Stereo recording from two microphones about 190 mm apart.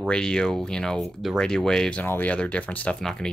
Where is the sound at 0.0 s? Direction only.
5° left (ahead or behind).